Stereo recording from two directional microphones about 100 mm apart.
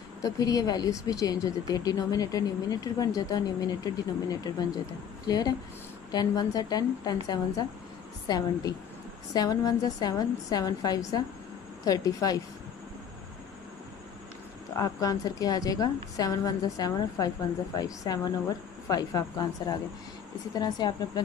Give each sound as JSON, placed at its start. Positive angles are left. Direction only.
{"t": 0.2, "sound": "speech", "side_deg": 40}
{"t": 8.3, "sound": "speech", "side_deg": 40}
{"t": 14.8, "sound": "speech", "side_deg": 35}